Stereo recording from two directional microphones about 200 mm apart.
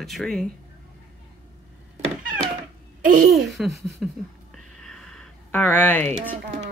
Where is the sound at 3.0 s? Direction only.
45° right (ahead or behind).